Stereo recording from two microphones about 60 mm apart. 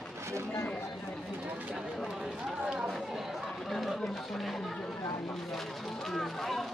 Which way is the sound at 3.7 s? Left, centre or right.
Centre.